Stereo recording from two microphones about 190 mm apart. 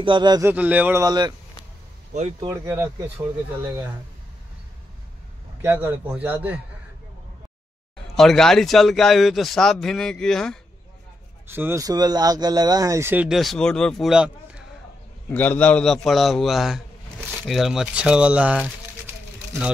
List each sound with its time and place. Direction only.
0.0 s speech: 25° right (ahead or behind)
0.5 s speech: 10° right (ahead or behind)
1.0 s speech: 20° right (ahead or behind)
2.4 s speech: 15° right (ahead or behind)
5.6 s speech: 10° right (ahead or behind)
8.2 s a man's voice: centre (ahead or behind)
11.4 s speech: 10° right (ahead or behind)
15.2 s a man's voice: 10° left (ahead or behind); by 18.7 s 5° right (ahead or behind)